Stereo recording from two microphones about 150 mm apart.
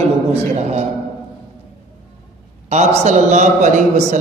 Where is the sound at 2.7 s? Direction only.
50° right (ahead or behind).